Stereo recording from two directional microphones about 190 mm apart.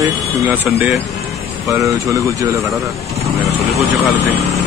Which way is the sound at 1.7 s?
15° right (ahead or behind).